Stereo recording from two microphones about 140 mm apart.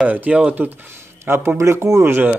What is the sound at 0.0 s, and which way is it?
Speech, 10° right (ahead or behind).